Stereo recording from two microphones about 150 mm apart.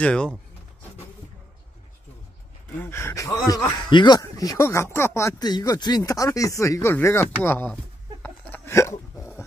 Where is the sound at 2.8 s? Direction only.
15° left (ahead or behind).